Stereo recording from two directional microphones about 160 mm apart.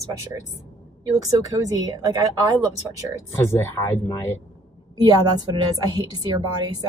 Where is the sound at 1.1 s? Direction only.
20° right (ahead or behind).